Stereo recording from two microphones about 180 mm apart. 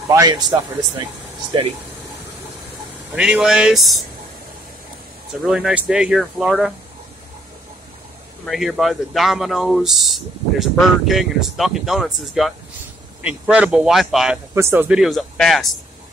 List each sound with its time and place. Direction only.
0.1 s speech: 20° right (ahead or behind)
3.2 s speech: 5° right (ahead or behind)
5.4 s speech: 5° right (ahead or behind)
8.5 s speech: centre (ahead or behind)
14.5 s speech: 15° right (ahead or behind)